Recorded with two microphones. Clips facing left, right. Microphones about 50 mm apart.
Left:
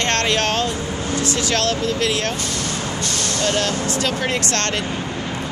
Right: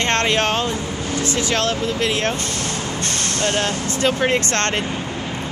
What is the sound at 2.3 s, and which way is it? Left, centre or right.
Speech, right.